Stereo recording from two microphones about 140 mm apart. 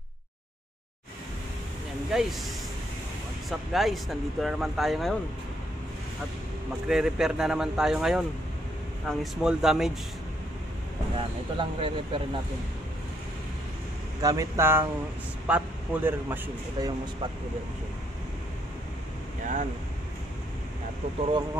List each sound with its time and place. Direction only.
2.1 s speech: 5° right (ahead or behind)
3.4 s speech: centre (ahead or behind)
6.9 s speech: 5° right (ahead or behind)
11.1 s speech: 40° right (ahead or behind)
14.2 s speech: 25° right (ahead or behind)
16.8 s speech: 30° right (ahead or behind)
19.4 s speech: 65° right (ahead or behind)